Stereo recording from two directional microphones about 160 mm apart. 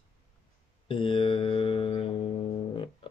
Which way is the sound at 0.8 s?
35° left (ahead or behind).